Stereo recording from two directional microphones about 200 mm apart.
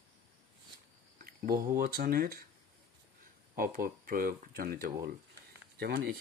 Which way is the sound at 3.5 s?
45° right (ahead or behind).